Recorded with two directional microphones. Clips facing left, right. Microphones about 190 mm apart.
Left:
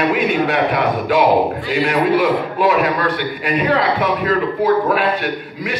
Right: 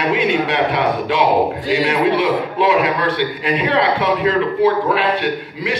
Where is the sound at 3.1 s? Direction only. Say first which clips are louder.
Right 1 dB; 25° right (ahead or behind).